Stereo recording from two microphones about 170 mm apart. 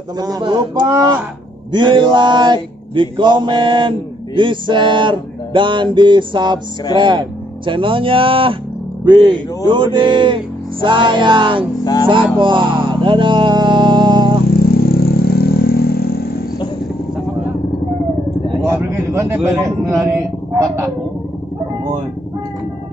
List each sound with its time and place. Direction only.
0.2 s mantra: 25° right (ahead or behind)
7.0 s speech: 30° right (ahead or behind)
9.0 s mantra: 25° right (ahead or behind)
11.8 s music: 20° left (ahead or behind)
12.1 s speech: 30° right (ahead or behind)
14.5 s vehicle: 65° left (ahead or behind)
18.6 s a sound: 15° right (ahead or behind)